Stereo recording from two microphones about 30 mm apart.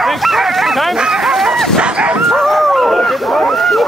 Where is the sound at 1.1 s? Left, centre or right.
Centre.